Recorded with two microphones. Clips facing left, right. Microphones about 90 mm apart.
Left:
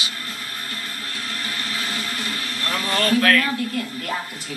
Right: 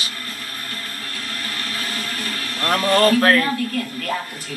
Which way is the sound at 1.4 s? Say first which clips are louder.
Even; 40° right (ahead or behind).